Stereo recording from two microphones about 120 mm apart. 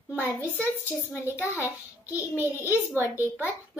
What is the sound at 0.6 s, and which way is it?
Speech, 15° left (ahead or behind).